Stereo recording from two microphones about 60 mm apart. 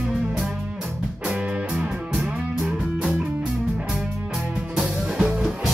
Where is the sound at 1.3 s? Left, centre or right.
Centre.